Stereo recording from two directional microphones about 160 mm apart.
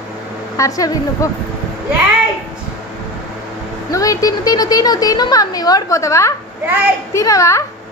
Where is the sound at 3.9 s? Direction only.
20° left (ahead or behind).